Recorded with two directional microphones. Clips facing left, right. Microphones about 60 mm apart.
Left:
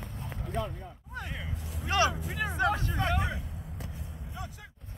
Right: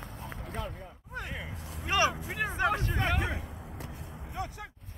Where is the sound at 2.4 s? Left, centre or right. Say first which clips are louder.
Even; centre.